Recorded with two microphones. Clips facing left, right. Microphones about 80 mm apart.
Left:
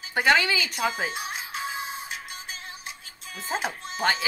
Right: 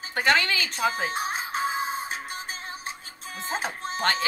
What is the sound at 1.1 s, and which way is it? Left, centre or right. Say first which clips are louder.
Music: right 5 dB; right.